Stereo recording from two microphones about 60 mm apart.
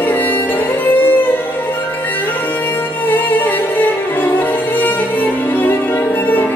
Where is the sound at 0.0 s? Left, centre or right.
Left.